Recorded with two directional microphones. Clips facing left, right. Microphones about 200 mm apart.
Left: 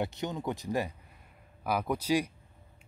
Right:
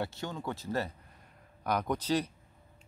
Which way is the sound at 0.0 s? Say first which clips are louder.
Left 3 dB; 20° left (ahead or behind).